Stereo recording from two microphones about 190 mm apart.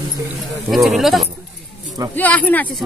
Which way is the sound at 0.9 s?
Centre (ahead or behind).